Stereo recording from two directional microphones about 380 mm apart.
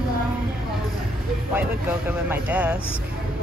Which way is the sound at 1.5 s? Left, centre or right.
Centre.